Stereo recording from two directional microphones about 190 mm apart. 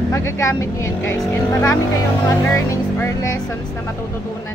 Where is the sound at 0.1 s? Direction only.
15° left (ahead or behind).